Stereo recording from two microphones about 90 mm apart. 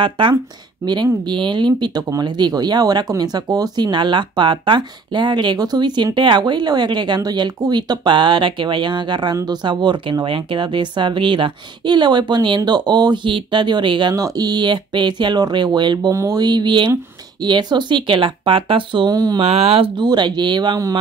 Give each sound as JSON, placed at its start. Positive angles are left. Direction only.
{"t": 0.0, "sound": "speech", "side_deg": -65}
{"t": 0.8, "sound": "speech", "side_deg": -35}
{"t": 1.2, "sound": "speech", "side_deg": -60}
{"t": 14.1, "sound": "speech", "side_deg": -45}
{"t": 16.1, "sound": "speech", "side_deg": -40}
{"t": 19.4, "sound": "speech", "side_deg": -90}
{"t": 20.0, "sound": "speech", "side_deg": -55}